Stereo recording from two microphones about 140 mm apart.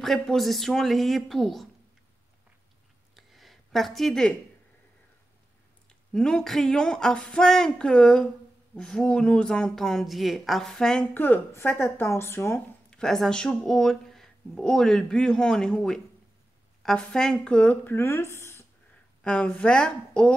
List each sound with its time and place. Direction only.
0.0 s speech: centre (ahead or behind)
3.2 s a sound: centre (ahead or behind)
6.1 s speech: 5° left (ahead or behind)
11.1 s speech: 15° left (ahead or behind)
12.9 s speech: centre (ahead or behind)